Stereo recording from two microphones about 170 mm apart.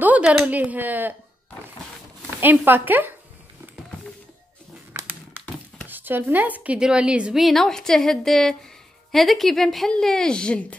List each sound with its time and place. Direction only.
0.0 s speech: 10° right (ahead or behind)
2.4 s speech: 10° right (ahead or behind)
4.9 s crumpling: 15° right (ahead or behind)
5.9 s a woman's voice: 10° right (ahead or behind); by 10.8 s 5° left (ahead or behind)